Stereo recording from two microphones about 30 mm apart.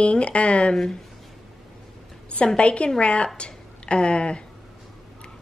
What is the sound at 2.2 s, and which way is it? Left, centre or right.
A woman's voice, left.